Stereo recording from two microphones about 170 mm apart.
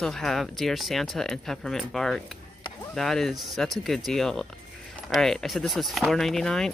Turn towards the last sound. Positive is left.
turn(degrees=5)  # may be behind; listen again after turning